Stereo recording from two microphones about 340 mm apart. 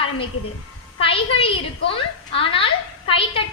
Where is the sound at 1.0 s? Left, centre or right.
Centre.